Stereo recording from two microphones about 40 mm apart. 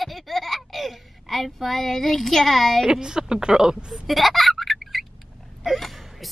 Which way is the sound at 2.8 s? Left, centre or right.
Centre.